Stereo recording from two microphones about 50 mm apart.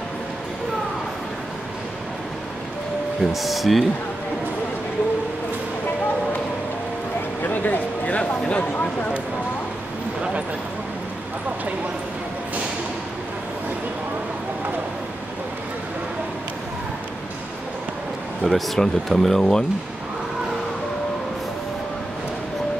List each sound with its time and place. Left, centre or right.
3.2 s speech: centre
7.4 s a sound: left
8.2 s speech: left
18.4 s speech: centre